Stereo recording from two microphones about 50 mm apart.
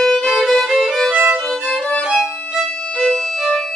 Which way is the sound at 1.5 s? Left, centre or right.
Centre.